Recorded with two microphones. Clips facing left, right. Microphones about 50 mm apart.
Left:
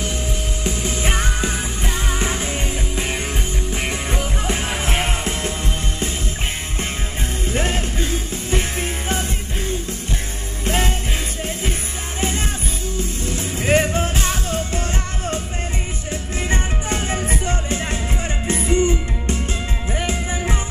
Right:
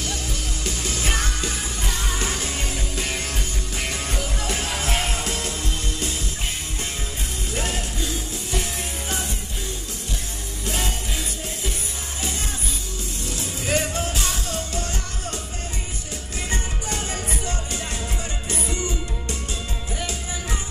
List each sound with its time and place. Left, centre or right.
0.7 s music: left
3.7 s music: left
7.5 s music: left
10.6 s music: left
13.2 s music: left
16.4 s music: left